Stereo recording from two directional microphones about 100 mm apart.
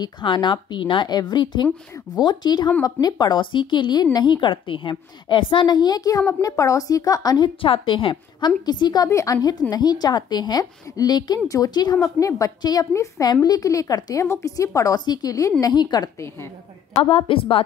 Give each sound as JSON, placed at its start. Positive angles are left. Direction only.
{"t": 0.0, "sound": "a woman's voice", "side_deg": 50}
{"t": 7.4, "sound": "a woman's voice", "side_deg": 60}
{"t": 9.1, "sound": "a woman's voice", "side_deg": 35}
{"t": 16.9, "sound": "a woman's voice", "side_deg": 70}